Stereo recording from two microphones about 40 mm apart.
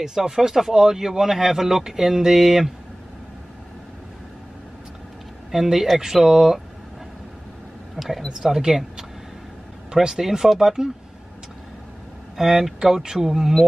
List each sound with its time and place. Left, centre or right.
0.0 s speech: centre
5.5 s speech: centre
7.9 s speech: centre
12.4 s speech: centre